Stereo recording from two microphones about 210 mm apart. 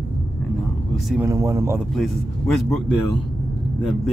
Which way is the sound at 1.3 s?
15° right (ahead or behind).